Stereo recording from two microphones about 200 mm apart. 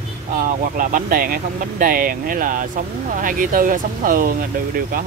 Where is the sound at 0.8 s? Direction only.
45° right (ahead or behind).